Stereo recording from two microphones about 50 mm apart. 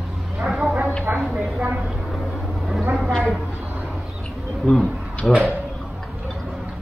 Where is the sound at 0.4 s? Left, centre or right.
Centre.